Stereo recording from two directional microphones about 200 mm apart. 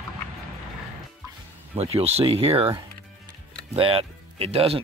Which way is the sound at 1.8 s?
30° right (ahead or behind).